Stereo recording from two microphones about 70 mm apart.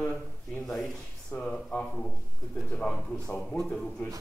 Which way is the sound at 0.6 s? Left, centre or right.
Centre.